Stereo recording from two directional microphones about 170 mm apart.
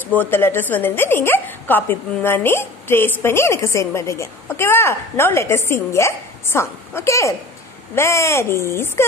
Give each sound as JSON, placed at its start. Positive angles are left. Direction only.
{"t": 0.0, "sound": "speech", "side_deg": 10}